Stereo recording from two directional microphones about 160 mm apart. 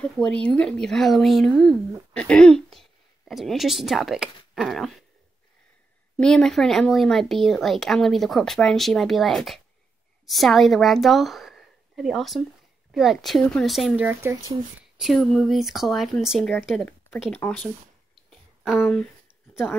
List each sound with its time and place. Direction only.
0.0 s a woman's voice: 5° left (ahead or behind)
6.1 s speech: 5° left (ahead or behind); by 14.3 s 10° right (ahead or behind)
15.0 s speech: centre (ahead or behind)
18.8 s speech: 10° left (ahead or behind)